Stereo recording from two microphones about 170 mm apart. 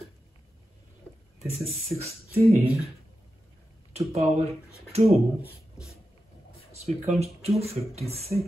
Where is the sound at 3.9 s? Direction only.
35° right (ahead or behind).